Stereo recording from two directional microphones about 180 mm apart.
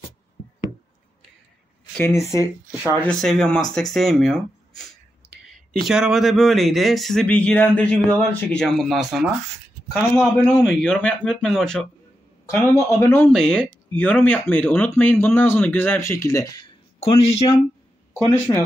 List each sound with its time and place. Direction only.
2.0 s speech: 10° left (ahead or behind)
9.9 s speech: 10° left (ahead or behind)
12.4 s speech: 15° left (ahead or behind)
17.0 s speech: 35° left (ahead or behind)
18.2 s speech: 15° left (ahead or behind)